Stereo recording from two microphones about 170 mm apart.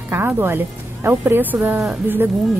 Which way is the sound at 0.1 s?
10° right (ahead or behind).